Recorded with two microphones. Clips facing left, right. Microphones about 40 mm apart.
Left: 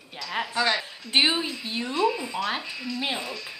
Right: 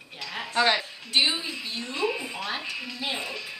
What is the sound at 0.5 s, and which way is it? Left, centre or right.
Speech, right.